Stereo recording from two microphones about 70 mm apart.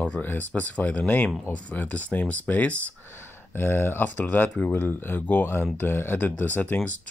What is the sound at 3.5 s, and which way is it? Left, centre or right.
Speech, left.